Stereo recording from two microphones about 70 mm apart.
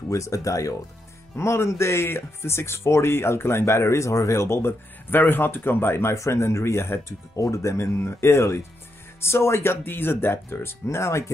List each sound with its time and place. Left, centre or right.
0.1 s speech: left
1.3 s speech: left